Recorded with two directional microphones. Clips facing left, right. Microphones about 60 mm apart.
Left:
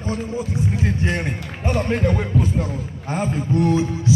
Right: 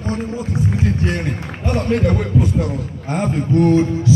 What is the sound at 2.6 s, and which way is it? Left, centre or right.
Speech, right.